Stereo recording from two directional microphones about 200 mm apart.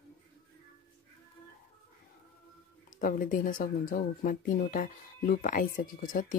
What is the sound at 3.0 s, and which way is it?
Speech, 45° left (ahead or behind).